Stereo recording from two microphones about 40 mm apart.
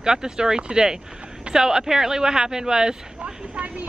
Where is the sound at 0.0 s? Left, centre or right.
Centre.